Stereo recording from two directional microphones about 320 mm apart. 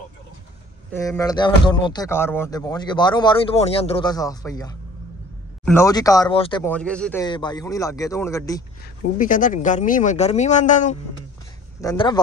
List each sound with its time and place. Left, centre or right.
0.9 s speech: centre
9.2 s speech: left
11.8 s speech: centre